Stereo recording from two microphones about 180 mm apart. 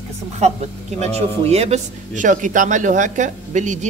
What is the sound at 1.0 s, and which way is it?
A woman's voice, 35° right (ahead or behind).